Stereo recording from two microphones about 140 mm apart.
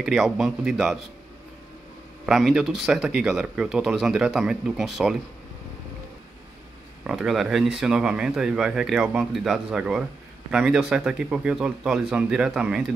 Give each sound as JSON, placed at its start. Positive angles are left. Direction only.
{"t": 0.0, "sound": "speech", "side_deg": -5}
{"t": 2.2, "sound": "speech", "side_deg": -5}
{"t": 7.1, "sound": "speech", "side_deg": -5}